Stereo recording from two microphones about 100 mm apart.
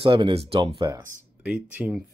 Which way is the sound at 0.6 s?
45° right (ahead or behind).